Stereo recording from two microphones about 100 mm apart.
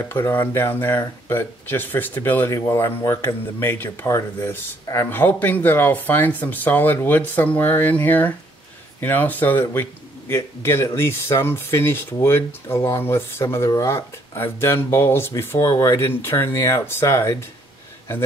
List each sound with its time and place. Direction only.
0.1 s speech: 20° left (ahead or behind)